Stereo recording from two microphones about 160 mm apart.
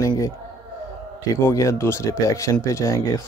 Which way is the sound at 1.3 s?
20° left (ahead or behind).